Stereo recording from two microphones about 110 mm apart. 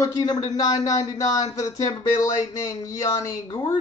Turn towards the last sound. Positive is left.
turn(degrees=35)  # may be behind; listen again after turning